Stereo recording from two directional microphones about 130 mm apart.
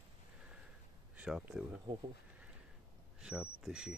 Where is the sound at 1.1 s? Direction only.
10° right (ahead or behind).